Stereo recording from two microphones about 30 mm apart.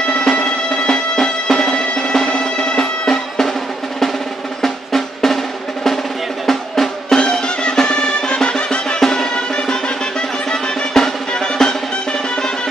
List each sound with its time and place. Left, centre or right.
0.1 s music: left
4.6 s drum: centre
6.4 s drum: centre
7.2 s music: left
9.0 s music: centre